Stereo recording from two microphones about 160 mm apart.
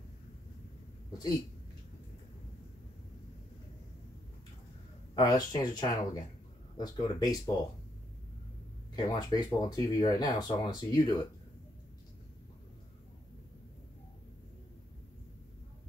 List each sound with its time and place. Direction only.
5.1 s speech: 25° left (ahead or behind)
8.9 s speech: 25° left (ahead or behind)